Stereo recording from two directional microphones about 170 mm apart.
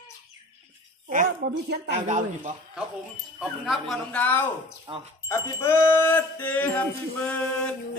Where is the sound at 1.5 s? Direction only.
90° right.